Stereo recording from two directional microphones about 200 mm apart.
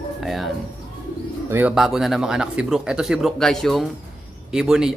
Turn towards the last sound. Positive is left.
turn(degrees=-5)  # may be behind; listen again after turning